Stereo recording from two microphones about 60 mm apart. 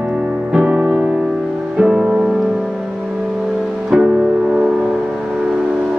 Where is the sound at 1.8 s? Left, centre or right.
Centre.